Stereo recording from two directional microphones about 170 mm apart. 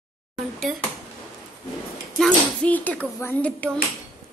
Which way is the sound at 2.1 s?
5° left (ahead or behind).